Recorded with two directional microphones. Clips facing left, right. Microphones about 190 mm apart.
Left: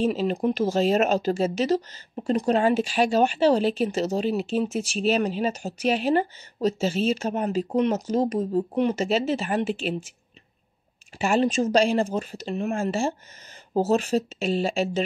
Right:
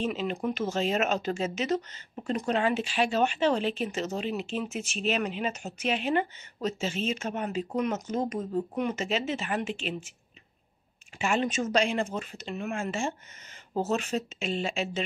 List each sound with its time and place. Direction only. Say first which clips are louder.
0.0 s speech: left 7 dB; 35° left (ahead or behind)
11.1 s speech: left 6 dB; 35° left (ahead or behind)